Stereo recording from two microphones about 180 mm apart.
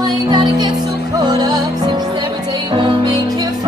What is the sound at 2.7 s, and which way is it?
Music, 25° right (ahead or behind).